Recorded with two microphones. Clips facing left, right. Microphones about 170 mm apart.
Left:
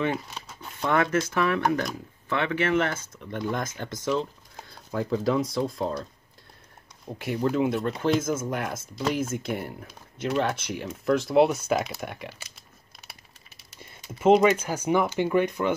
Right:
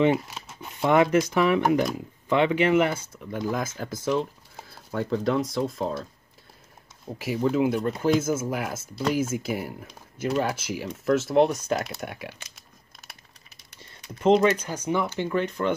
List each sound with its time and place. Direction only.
0.4 s shuffling cards: 5° right (ahead or behind)
0.7 s speech: 15° right (ahead or behind)
7.1 s speech: centre (ahead or behind)
14.0 s speech: 5° left (ahead or behind)